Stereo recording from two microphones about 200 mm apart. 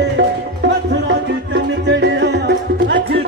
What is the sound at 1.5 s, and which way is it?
Music, 60° right (ahead or behind).